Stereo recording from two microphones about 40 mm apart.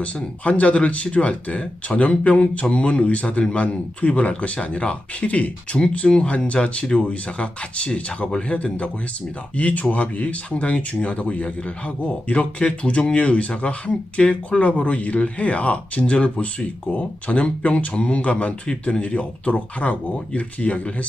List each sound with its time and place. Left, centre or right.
0.0 s speech: left